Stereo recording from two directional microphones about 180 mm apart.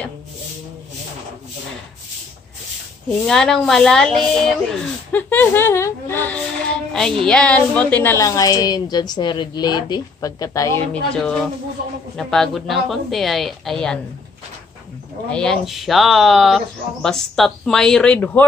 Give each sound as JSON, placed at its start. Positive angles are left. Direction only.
{"t": 3.3, "sound": "a woman's voice", "side_deg": 0}
{"t": 10.9, "sound": "speech", "side_deg": 5}
{"t": 15.3, "sound": "speech", "side_deg": 5}